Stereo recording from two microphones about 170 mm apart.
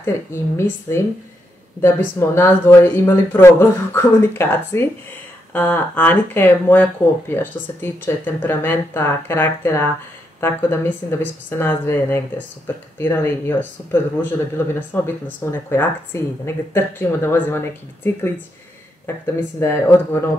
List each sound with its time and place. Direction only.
0.0 s speech: 15° left (ahead or behind)
2.1 s speech: 15° left (ahead or behind)
19.6 s speech: 15° left (ahead or behind)